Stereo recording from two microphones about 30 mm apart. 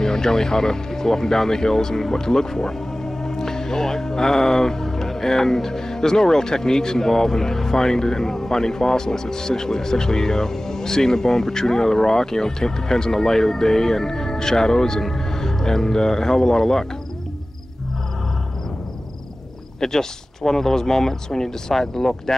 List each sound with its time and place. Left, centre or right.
0.0 s speech: centre
19.8 s speech: centre